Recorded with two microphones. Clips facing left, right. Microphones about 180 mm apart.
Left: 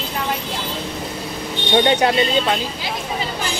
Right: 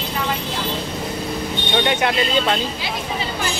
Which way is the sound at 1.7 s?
30° left (ahead or behind).